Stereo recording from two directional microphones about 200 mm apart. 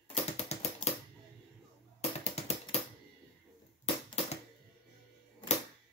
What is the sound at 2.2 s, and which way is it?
Music, 30° left (ahead or behind).